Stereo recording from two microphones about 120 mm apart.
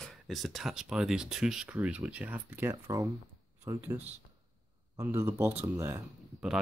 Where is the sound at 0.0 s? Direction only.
Centre (ahead or behind); by 3.1 s 25° right (ahead or behind).